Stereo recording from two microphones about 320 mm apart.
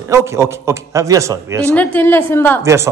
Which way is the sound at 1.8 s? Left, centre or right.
Centre.